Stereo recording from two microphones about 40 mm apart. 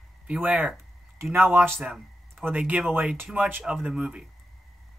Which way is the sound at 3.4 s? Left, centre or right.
Right.